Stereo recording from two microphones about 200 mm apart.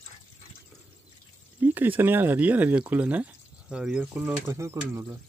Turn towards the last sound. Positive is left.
turn(degrees=-15)  # may be behind; listen again after turning